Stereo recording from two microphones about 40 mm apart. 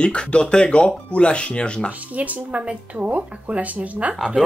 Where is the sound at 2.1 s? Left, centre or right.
Right.